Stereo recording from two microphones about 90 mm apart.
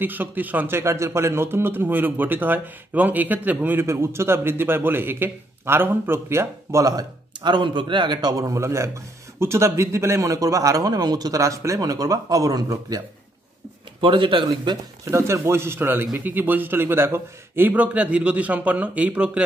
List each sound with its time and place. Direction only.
0.0 s a man's voice: 20° right (ahead or behind); by 13.0 s 40° right (ahead or behind)
14.0 s a man's voice: 70° right (ahead or behind); by 14.8 s 55° right (ahead or behind)
15.0 s speech: 30° right (ahead or behind); by 19.4 s 15° right (ahead or behind)